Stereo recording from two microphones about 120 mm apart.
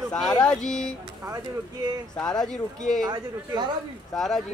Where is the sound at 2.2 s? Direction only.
5° left (ahead or behind).